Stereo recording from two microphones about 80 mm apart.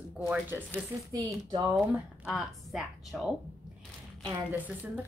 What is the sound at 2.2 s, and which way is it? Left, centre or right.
A woman's voice, centre.